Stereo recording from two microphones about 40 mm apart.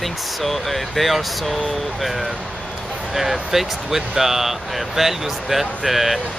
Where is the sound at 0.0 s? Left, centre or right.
Centre.